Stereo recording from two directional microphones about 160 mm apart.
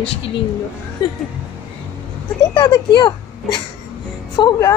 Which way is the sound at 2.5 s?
30° left (ahead or behind).